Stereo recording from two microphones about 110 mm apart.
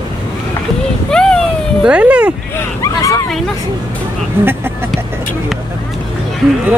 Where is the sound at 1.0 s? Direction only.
5° left (ahead or behind).